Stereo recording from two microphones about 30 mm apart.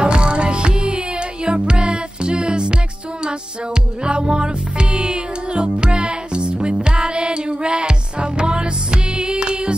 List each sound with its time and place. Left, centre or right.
0.0 s music: right
4.0 s music: right